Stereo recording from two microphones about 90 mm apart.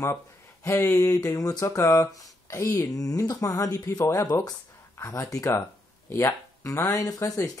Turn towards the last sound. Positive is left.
turn(degrees=40)  # may be behind; listen again after turning